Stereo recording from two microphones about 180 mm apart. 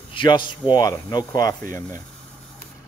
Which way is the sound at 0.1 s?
25° left (ahead or behind).